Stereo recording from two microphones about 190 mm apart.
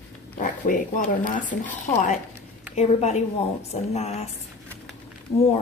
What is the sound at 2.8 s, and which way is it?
Speech, 35° left (ahead or behind).